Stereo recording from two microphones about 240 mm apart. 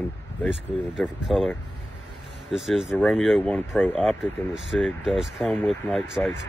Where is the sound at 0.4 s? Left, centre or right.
Centre.